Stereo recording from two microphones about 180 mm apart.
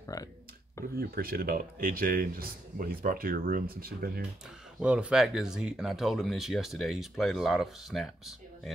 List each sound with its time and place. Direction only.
0.0 s a sound: 20° left (ahead or behind)
0.9 s speech: 55° right (ahead or behind)
4.7 s speech: 5° right (ahead or behind)